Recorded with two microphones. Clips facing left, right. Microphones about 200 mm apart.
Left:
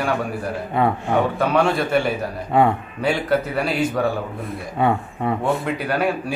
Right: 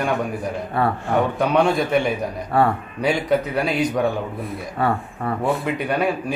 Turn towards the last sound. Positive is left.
turn(degrees=0)  # may be behind; listen again after turning